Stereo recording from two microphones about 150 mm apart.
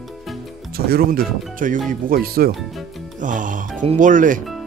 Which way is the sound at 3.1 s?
60° right (ahead or behind).